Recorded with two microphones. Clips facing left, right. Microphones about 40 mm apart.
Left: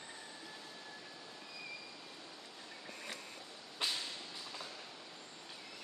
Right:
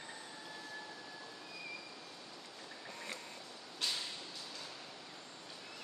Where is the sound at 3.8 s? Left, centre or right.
Centre.